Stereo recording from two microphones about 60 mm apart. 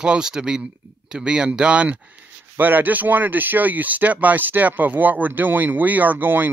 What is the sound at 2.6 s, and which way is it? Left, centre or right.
Speech, right.